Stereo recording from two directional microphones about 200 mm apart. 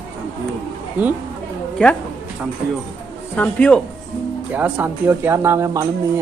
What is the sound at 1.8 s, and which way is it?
Speech, 5° left (ahead or behind).